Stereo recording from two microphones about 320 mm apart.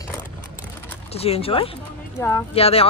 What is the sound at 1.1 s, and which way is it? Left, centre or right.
Speech, centre.